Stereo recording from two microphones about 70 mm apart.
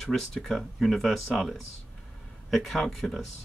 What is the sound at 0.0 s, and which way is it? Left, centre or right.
Speech, centre.